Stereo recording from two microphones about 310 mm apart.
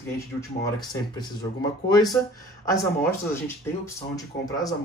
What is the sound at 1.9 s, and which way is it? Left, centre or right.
Speech, centre.